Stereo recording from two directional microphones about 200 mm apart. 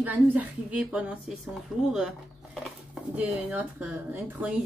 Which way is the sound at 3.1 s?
10° right (ahead or behind).